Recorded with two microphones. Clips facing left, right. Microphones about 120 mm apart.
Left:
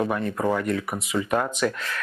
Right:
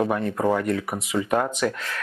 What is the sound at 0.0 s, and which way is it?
Speech, 35° right (ahead or behind).